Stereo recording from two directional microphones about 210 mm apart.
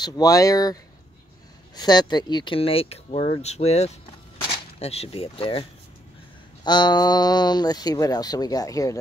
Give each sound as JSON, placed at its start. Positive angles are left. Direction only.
{"t": 0.0, "sound": "speech", "side_deg": 15}
{"t": 1.8, "sound": "speech", "side_deg": 20}